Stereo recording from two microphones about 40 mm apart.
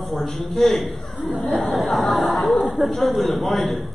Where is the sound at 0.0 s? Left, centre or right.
Centre.